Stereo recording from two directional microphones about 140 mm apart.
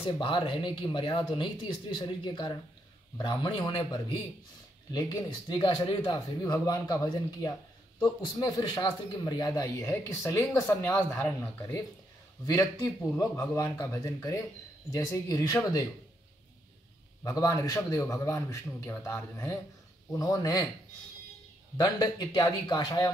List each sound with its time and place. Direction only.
0.0 s a man's voice: 35° left (ahead or behind)
8.0 s a man's voice: 35° left (ahead or behind)
17.2 s a man's voice: 25° left (ahead or behind)
21.7 s a man's voice: 30° left (ahead or behind)